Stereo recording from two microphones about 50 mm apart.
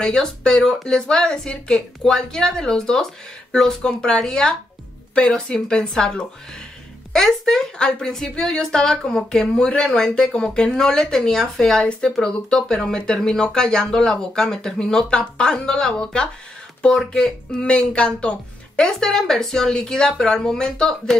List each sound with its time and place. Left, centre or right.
0.0 s speech: centre